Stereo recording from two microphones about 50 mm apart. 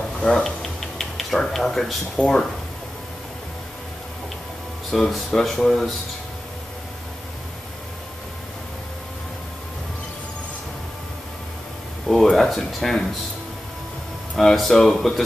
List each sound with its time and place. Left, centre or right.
0.2 s speech: centre
0.6 s music: centre
1.5 s speech: centre
2.2 s speech: left
4.9 s speech: centre
12.1 s speech: centre
14.3 s speech: centre